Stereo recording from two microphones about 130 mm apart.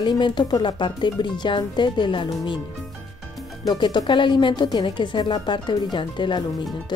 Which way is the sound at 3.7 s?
30° left (ahead or behind).